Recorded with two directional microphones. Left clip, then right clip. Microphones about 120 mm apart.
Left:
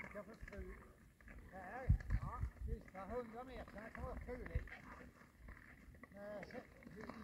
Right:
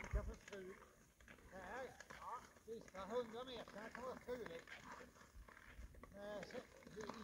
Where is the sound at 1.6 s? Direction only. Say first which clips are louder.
Left 2 dB; 25° right (ahead or behind).